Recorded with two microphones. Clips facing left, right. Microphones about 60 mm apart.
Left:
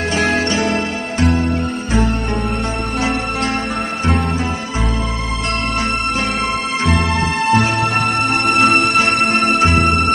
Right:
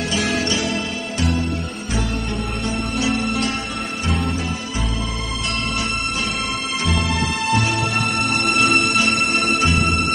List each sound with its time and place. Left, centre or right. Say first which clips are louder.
0.1 s music: left 5 dB; left
6.8 s music: left 4 dB; left